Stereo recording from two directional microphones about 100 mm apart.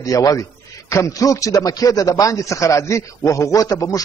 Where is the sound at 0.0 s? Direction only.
35° left (ahead or behind).